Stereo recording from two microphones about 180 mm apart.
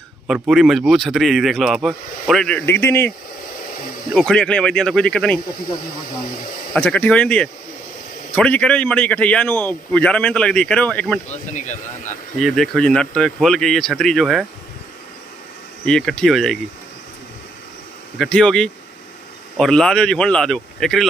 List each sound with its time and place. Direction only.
0.3 s speech: centre (ahead or behind)
4.1 s speech: 5° left (ahead or behind)
6.7 s a man's voice: 5° left (ahead or behind)
11.2 s speech: 40° left (ahead or behind)
12.4 s speech: centre (ahead or behind)
15.8 s speech: 5° left (ahead or behind)
18.1 s speech: centre (ahead or behind)